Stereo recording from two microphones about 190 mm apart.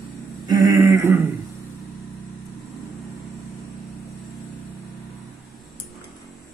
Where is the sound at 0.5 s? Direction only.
20° right (ahead or behind).